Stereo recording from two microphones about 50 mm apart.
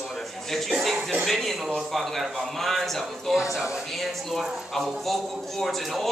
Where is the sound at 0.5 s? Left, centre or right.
Centre.